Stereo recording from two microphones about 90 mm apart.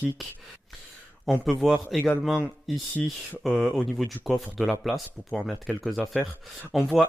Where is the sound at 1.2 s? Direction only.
Centre (ahead or behind).